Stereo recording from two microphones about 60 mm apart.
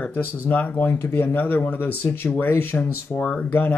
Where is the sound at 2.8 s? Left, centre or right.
Left.